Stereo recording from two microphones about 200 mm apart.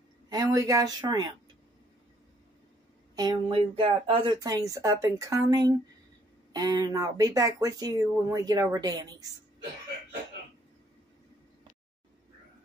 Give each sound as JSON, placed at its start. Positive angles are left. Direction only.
{"t": 0.3, "sound": "speech", "side_deg": -20}
{"t": 3.2, "sound": "speech", "side_deg": -25}